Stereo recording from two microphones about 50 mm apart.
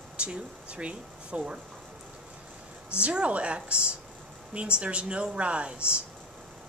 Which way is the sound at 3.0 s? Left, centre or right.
Right.